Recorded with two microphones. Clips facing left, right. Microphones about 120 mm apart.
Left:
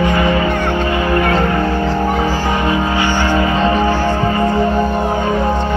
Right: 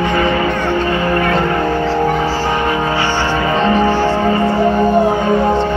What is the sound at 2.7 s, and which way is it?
Music, 30° right (ahead or behind).